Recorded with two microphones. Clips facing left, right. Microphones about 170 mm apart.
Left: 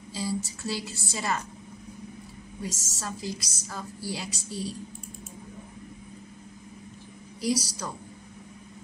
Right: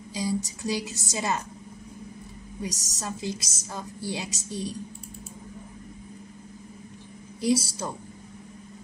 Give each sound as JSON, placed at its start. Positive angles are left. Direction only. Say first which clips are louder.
{"t": 0.1, "sound": "a woman's voice", "louder": "right 3 dB", "side_deg": -20}
{"t": 2.6, "sound": "a woman's voice", "louder": "right 2 dB", "side_deg": -15}
{"t": 7.5, "sound": "a woman's voice", "louder": "right 4 dB", "side_deg": -25}